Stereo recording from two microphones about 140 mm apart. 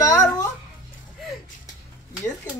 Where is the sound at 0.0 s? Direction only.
25° left (ahead or behind).